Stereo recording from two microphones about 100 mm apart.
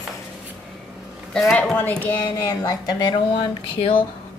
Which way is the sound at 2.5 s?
40° left (ahead or behind).